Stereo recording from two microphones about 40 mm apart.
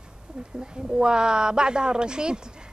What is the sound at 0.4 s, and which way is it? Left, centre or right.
A woman's voice, right.